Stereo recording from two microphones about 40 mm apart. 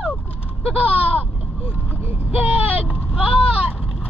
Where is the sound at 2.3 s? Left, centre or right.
Right.